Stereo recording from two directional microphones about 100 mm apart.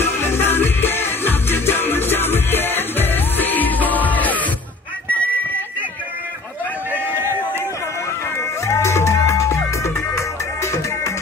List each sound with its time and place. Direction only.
0.0 s music: 20° left (ahead or behind)
7.2 s a sound: 25° right (ahead or behind)
8.4 s music: 30° left (ahead or behind)